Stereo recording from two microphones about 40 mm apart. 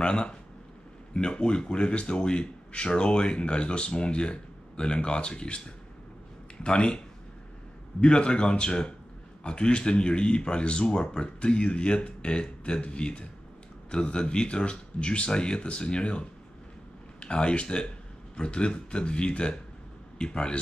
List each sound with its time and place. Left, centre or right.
0.0 s speech: left
6.6 s speech: left
8.0 s speech: left